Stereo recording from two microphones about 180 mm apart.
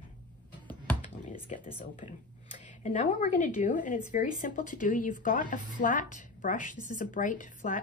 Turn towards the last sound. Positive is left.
turn(degrees=45)  # may be behind; listen again after turning